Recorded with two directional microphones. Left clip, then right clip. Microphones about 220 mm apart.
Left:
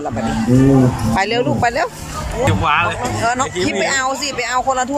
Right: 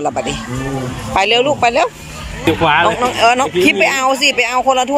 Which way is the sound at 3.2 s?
10° right (ahead or behind).